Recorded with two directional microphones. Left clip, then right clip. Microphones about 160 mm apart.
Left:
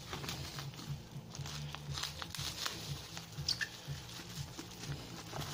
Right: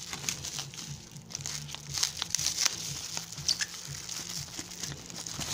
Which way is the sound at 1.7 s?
45° right (ahead or behind).